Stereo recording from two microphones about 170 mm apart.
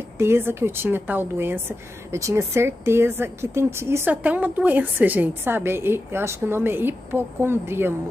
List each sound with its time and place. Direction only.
0.2 s a woman's voice: 15° right (ahead or behind)